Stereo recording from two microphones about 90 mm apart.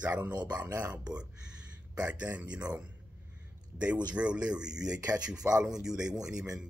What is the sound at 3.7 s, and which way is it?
Speech, 15° right (ahead or behind).